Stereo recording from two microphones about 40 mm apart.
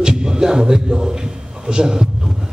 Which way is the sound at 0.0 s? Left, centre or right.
Centre.